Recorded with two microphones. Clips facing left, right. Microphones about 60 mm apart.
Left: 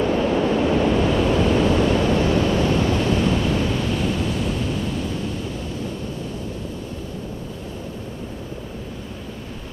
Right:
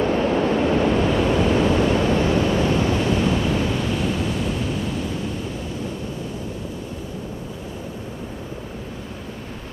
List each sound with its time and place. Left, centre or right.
0.0 s waves: right
1.0 s waves: centre